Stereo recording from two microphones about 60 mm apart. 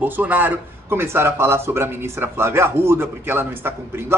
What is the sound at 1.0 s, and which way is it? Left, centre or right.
Speech, right.